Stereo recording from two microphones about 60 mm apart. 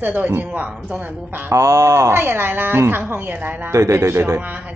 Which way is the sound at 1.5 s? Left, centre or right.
Right.